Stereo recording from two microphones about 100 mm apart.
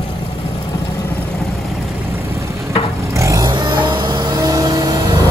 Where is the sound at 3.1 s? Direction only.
30° right (ahead or behind).